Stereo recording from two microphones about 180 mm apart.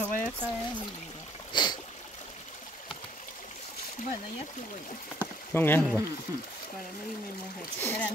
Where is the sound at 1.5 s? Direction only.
25° left (ahead or behind).